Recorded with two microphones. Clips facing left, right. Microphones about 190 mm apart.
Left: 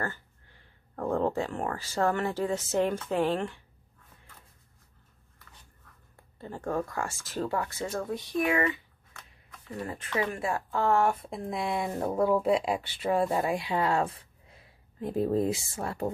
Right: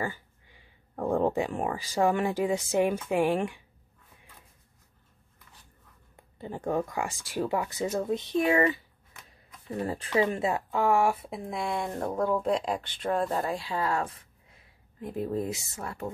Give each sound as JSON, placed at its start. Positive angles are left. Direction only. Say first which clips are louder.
{"t": 0.0, "sound": "speech", "louder": "right 2 dB", "side_deg": -10}
{"t": 6.1, "sound": "speech", "louder": "right 3 dB", "side_deg": -15}
{"t": 9.1, "sound": "shuffling cards", "louder": "even", "side_deg": -20}
{"t": 9.8, "sound": "speech", "louder": "right 5 dB", "side_deg": -35}